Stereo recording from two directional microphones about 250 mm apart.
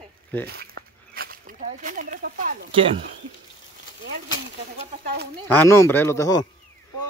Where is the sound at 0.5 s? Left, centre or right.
Right.